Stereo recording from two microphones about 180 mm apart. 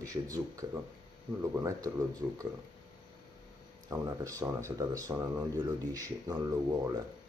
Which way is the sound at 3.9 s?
20° right (ahead or behind).